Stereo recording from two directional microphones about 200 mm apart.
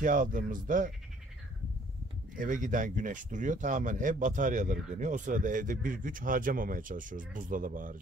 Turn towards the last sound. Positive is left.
turn(degrees=-40)  # may be behind; listen again after turning